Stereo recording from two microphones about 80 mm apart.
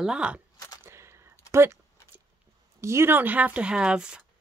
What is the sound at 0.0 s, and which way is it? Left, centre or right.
Speech, centre.